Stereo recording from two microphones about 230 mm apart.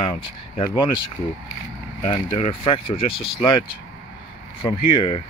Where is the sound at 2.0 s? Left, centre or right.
Left.